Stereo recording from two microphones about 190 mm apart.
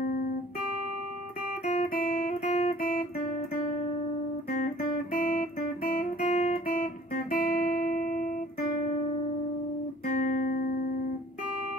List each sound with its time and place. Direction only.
1.6 s guitar: 35° left (ahead or behind)
5.1 s guitar: 45° left (ahead or behind)
5.9 s guitar: 40° left (ahead or behind)
10.2 s guitar: 45° left (ahead or behind)